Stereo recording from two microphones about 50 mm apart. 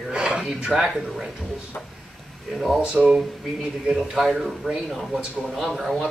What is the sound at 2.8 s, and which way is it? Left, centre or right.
Speech, centre.